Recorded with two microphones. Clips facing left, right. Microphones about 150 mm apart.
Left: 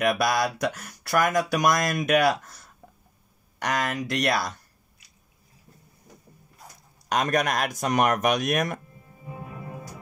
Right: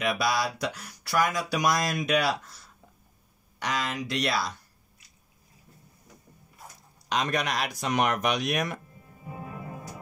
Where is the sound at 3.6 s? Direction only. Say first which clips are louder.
Left 4 dB; 50° left (ahead or behind).